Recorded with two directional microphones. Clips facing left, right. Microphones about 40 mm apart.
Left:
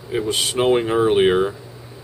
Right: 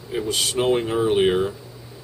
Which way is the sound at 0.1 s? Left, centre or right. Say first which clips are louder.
Left 2 dB; centre.